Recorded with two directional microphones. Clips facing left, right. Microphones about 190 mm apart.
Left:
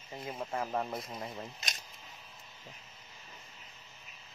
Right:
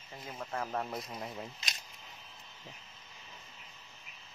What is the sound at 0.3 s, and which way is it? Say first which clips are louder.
Speech: left 3 dB; 20° left (ahead or behind).